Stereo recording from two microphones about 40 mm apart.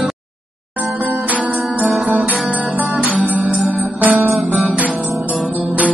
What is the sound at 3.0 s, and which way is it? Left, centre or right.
Music, right.